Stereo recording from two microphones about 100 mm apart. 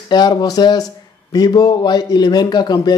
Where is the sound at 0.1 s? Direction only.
45° left (ahead or behind).